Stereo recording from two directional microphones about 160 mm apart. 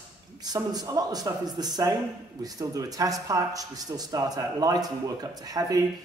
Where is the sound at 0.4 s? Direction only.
25° right (ahead or behind).